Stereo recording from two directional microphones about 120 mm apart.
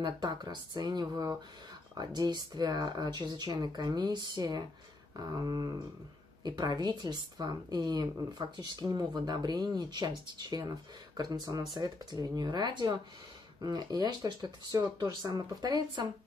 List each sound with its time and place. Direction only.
0.0 s speech: 35° right (ahead or behind)
11.7 s speech: 35° right (ahead or behind)